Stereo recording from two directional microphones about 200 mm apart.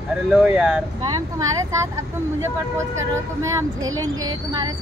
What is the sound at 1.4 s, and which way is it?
Speech, 15° right (ahead or behind).